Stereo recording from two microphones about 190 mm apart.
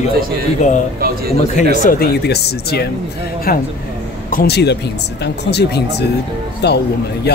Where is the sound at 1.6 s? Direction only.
45° left (ahead or behind).